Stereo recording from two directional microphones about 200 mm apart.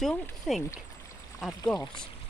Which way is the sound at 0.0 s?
Centre (ahead or behind).